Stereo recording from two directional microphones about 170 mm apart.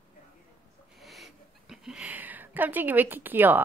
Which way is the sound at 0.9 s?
Centre (ahead or behind).